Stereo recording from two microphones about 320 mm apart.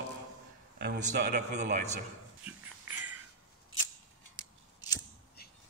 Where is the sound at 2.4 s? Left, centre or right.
Centre.